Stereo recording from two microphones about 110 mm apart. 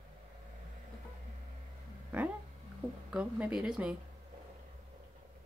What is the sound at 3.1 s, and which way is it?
Speech, 10° right (ahead or behind).